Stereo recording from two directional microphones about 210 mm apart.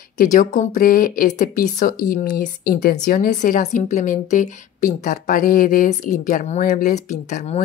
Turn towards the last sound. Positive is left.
turn(degrees=30)  # may be behind; listen again after turning